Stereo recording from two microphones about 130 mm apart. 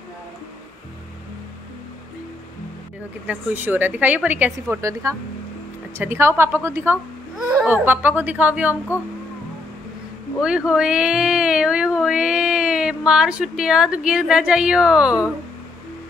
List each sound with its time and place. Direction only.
3.3 s a woman's voice: 15° right (ahead or behind)
10.4 s speech: 5° right (ahead or behind)